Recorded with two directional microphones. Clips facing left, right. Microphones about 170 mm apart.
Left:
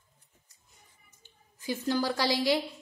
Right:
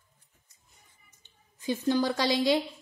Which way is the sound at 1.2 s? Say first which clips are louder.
Right 4 dB; 20° right (ahead or behind).